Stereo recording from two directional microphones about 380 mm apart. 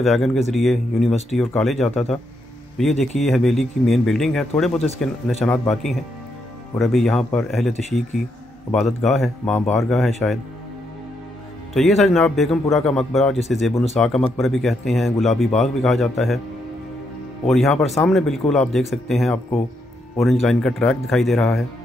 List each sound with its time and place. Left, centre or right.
0.0 s speech: centre
4.7 s speech: centre
5.4 s speech: centre
11.7 s speech: centre
17.5 s speech: centre